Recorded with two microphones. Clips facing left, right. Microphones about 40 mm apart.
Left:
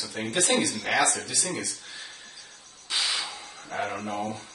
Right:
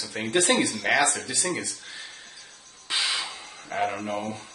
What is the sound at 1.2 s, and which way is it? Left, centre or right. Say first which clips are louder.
Speech: right 3 dB; right.